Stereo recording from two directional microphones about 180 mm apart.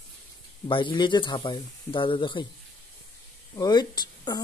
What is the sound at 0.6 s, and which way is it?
Speech, 25° left (ahead or behind).